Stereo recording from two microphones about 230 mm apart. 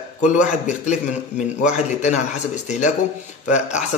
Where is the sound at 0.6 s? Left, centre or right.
Left.